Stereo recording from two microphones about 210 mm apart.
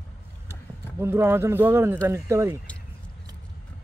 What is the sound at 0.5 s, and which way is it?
Speech, 10° right (ahead or behind).